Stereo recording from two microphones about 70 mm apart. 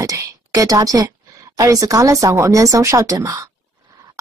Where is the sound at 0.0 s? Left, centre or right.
Right.